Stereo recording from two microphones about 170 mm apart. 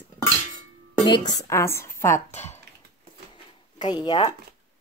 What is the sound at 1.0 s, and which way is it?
A woman's voice, 25° left (ahead or behind).